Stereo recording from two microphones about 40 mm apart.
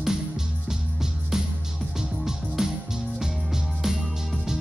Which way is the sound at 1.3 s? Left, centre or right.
Centre.